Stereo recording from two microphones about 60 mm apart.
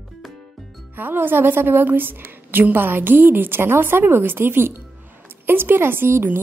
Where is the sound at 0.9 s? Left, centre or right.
Right.